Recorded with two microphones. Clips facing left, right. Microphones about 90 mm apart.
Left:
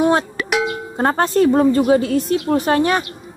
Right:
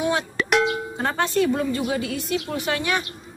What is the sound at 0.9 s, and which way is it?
A woman's voice, 40° left (ahead or behind).